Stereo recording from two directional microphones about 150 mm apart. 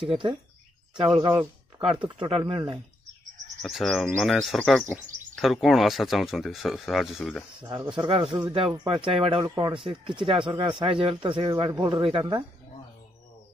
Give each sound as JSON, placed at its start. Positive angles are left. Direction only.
{"t": 0.1, "sound": "speech", "side_deg": -35}
{"t": 3.6, "sound": "speech", "side_deg": 0}
{"t": 7.6, "sound": "speech", "side_deg": -25}